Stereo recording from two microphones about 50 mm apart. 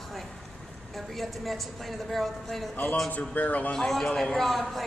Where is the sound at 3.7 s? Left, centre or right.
Centre.